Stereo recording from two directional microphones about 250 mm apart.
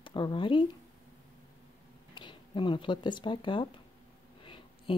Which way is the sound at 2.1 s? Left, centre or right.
Centre.